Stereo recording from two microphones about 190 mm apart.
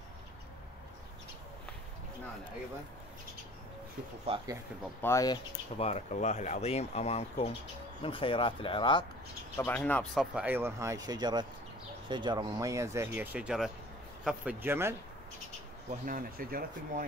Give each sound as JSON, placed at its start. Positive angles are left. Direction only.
{"t": 5.0, "sound": "speech", "side_deg": 15}
{"t": 5.8, "sound": "speech", "side_deg": 35}
{"t": 9.6, "sound": "speech", "side_deg": 10}
{"t": 10.3, "sound": "speech", "side_deg": -10}
{"t": 16.1, "sound": "speech", "side_deg": -50}